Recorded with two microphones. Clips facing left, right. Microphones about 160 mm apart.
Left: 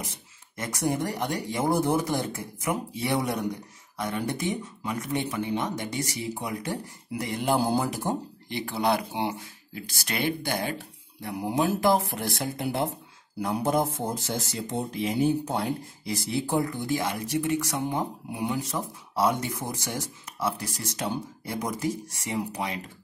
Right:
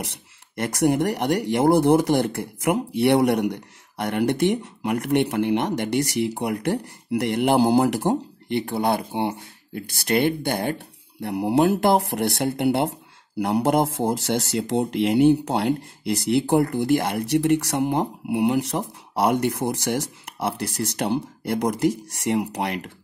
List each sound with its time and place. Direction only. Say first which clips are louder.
0.0 s speech: right 5 dB; 75° right (ahead or behind)